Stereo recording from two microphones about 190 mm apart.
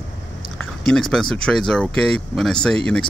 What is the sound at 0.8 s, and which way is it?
Speech, centre (ahead or behind).